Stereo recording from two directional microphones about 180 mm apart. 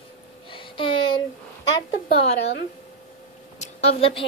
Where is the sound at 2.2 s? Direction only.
35° left (ahead or behind).